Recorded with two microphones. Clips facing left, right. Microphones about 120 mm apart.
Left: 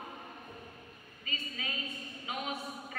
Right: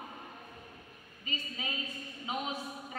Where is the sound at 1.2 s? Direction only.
20° right (ahead or behind).